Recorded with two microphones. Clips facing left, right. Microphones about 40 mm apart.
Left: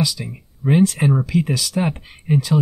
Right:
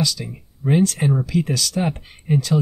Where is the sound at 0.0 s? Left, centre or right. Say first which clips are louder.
Left 1 dB; centre.